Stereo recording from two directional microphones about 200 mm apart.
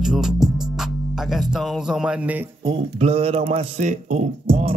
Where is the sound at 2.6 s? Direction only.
30° right (ahead or behind).